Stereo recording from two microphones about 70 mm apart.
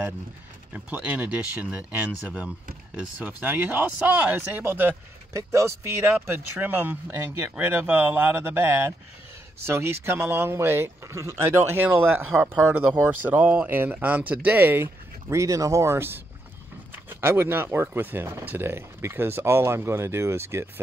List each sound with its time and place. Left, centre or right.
0.7 s speech: centre
5.3 s speech: right
6.2 s speech: right
15.4 s speech: right
17.2 s speech: right